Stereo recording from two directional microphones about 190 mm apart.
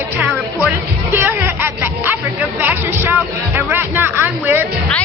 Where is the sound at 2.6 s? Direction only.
10° right (ahead or behind).